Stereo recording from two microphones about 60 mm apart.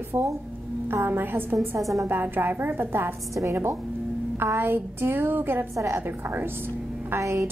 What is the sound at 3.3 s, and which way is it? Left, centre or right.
Speech, right.